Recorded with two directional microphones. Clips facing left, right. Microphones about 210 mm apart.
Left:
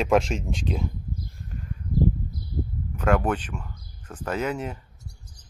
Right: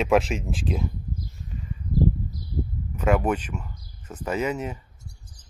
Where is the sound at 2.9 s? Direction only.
10° right (ahead or behind).